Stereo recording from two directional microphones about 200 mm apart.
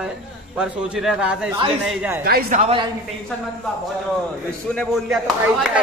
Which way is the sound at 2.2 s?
45° right (ahead or behind).